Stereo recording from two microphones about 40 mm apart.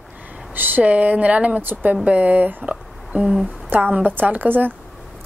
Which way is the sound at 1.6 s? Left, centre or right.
Right.